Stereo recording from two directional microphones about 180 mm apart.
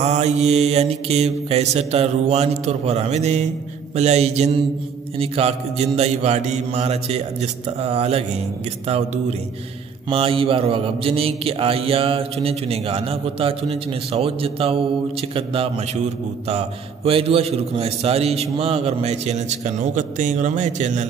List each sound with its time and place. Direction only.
0.0 s mantra: 35° right (ahead or behind)